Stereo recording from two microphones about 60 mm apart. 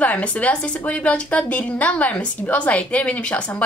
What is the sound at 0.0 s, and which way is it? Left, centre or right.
A woman's voice, left.